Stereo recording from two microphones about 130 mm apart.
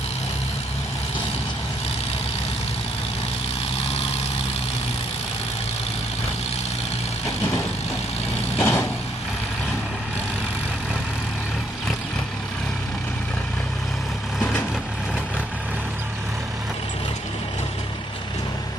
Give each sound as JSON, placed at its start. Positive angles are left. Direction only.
{"t": 8.5, "sound": "vehicle", "side_deg": 20}